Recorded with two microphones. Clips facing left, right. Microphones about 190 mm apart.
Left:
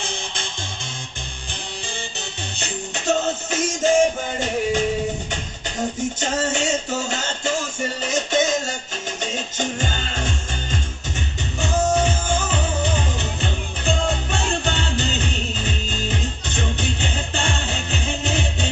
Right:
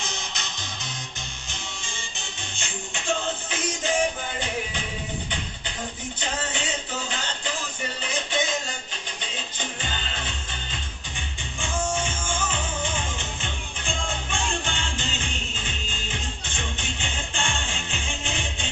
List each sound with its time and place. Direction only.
0.0 s music: 30° left (ahead or behind)
2.1 s music: 40° left (ahead or behind)